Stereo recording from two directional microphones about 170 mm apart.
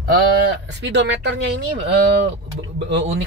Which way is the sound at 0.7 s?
90° right.